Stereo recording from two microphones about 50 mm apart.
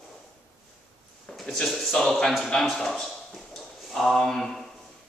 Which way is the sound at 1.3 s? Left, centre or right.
Centre.